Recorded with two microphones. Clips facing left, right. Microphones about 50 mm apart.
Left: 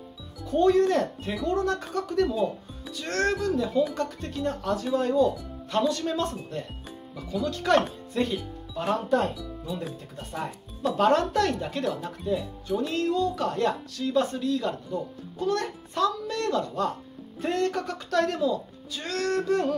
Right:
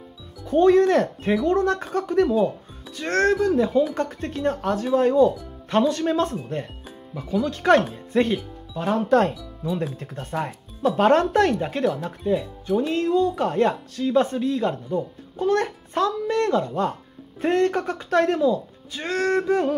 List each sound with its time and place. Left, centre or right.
0.5 s speech: right
9.1 s speech: right
9.9 s speech: right
11.0 s speech: right